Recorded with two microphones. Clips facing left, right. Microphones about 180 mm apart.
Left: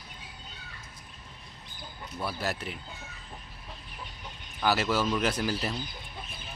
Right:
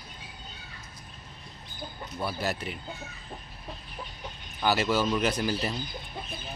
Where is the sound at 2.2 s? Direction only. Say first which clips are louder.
Right 2 dB; centre (ahead or behind).